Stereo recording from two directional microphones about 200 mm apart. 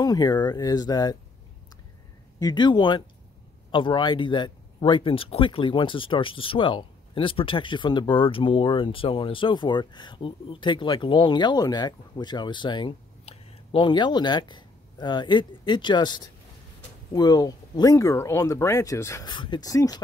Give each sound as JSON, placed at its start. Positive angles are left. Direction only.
{"t": 0.0, "sound": "speech", "side_deg": 20}
{"t": 2.3, "sound": "speech", "side_deg": 20}